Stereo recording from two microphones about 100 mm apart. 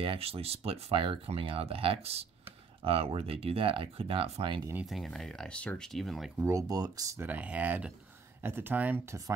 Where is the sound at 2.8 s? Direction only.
70° right (ahead or behind).